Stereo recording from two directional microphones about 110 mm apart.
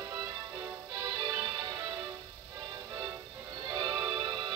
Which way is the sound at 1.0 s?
40° right (ahead or behind).